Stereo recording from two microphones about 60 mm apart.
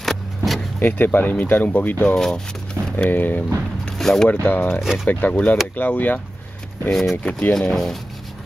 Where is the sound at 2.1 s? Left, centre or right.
Centre.